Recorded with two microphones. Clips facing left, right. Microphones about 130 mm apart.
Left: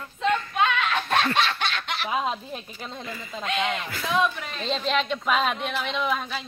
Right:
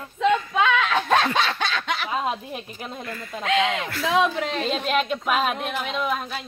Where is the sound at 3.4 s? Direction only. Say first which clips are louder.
Right 5 dB; 90° right.